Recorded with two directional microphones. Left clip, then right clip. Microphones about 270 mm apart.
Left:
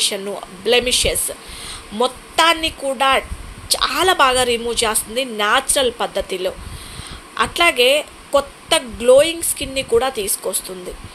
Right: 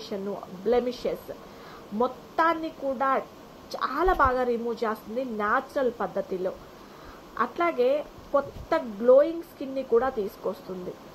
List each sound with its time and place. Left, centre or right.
0.7 s speech: left